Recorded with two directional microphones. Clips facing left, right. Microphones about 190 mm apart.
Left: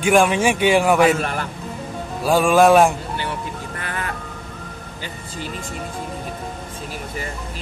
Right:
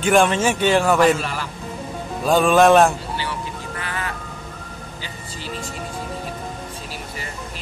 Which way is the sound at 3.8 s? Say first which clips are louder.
Even; 50° left (ahead or behind).